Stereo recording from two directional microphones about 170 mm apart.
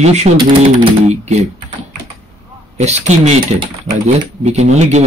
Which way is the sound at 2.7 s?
40° right (ahead or behind).